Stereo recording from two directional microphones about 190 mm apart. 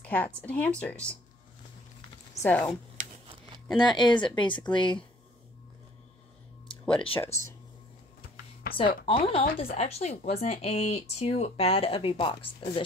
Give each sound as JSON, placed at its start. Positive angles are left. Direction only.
{"t": 0.0, "sound": "speech", "side_deg": 10}
{"t": 2.4, "sound": "speech", "side_deg": 5}
{"t": 3.6, "sound": "a woman's voice", "side_deg": 25}
{"t": 7.1, "sound": "a woman's voice", "side_deg": 30}
{"t": 8.7, "sound": "a woman's voice", "side_deg": 25}